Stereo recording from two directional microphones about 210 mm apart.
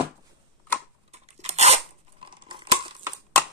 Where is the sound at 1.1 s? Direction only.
30° right (ahead or behind).